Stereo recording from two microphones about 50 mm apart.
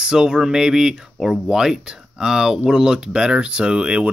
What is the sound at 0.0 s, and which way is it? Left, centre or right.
Speech, centre.